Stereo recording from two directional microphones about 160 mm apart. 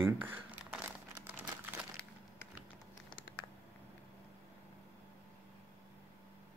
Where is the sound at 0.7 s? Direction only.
10° right (ahead or behind).